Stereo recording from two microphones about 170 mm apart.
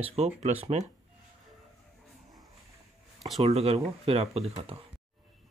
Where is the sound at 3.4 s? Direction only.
35° right (ahead or behind).